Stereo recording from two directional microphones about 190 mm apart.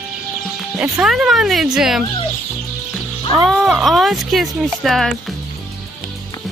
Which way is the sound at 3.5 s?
Centre (ahead or behind).